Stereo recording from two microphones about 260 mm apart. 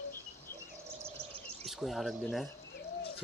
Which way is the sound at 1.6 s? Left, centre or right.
Centre.